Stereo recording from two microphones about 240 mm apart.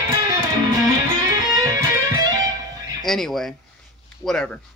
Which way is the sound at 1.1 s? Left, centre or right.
Centre.